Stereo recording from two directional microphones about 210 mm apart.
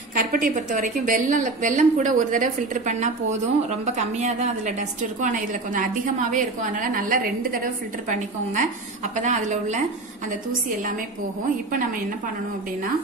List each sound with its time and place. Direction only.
0.1 s a woman's voice: 40° right (ahead or behind)